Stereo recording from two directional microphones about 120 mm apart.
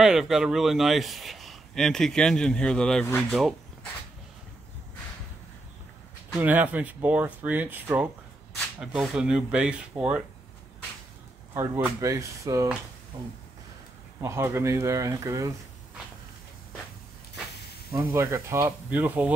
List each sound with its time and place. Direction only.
0.0 s a man's voice: 5° right (ahead or behind)
6.4 s speech: 15° right (ahead or behind)
11.5 s speech: 20° right (ahead or behind)
13.1 s a sound: 30° right (ahead or behind)
14.2 s speech: 20° right (ahead or behind)
17.9 s speech: 25° right (ahead or behind)
18.9 s speech: 15° right (ahead or behind)